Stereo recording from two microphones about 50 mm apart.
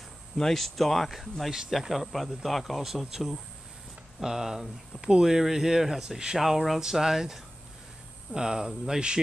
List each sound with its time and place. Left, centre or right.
0.4 s speech: centre